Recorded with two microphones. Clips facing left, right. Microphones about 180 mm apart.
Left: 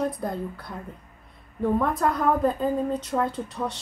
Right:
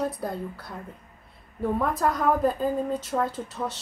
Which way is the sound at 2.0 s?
5° right (ahead or behind).